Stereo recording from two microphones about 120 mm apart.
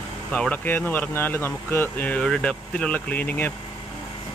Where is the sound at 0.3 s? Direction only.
10° left (ahead or behind).